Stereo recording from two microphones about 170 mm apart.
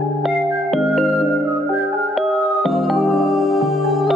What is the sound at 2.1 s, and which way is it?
Music, centre (ahead or behind).